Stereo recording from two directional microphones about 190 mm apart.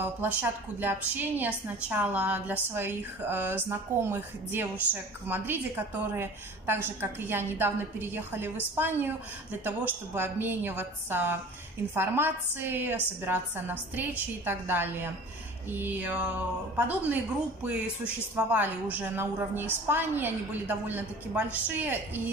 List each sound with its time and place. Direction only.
0.0 s a woman's voice: 10° right (ahead or behind)
6.1 s a woman's voice: 10° right (ahead or behind)